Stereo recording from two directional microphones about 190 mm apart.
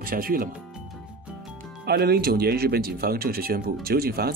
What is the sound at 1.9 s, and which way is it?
Speech, 55° right (ahead or behind).